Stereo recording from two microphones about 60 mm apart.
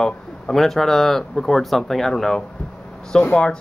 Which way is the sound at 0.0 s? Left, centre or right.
Centre.